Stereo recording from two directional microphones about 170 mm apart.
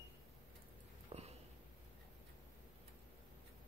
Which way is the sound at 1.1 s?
35° right (ahead or behind).